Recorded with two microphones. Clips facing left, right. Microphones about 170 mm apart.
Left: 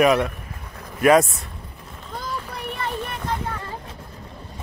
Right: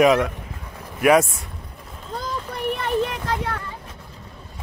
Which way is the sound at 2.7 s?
85° right.